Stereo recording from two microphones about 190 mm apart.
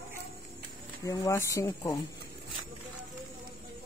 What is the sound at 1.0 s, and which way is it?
Speech, 20° left (ahead or behind).